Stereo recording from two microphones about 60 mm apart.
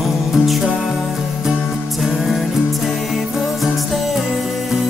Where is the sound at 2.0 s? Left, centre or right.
Centre.